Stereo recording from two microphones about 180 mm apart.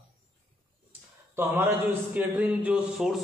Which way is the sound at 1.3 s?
10° right (ahead or behind).